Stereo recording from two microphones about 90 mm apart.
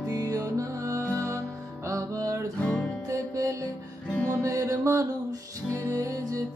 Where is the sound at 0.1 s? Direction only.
40° right (ahead or behind).